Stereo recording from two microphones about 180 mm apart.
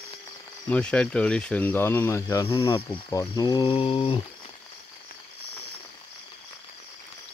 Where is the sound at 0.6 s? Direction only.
5° left (ahead or behind); by 4.3 s 30° left (ahead or behind).